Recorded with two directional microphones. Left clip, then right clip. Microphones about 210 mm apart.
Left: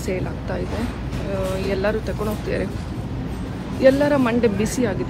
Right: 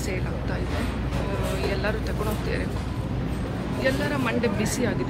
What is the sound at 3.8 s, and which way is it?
Speech, 10° left (ahead or behind).